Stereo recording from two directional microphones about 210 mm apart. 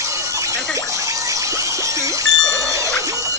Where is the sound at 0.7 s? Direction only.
15° right (ahead or behind).